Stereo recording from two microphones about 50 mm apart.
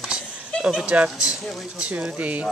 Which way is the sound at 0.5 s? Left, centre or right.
Left.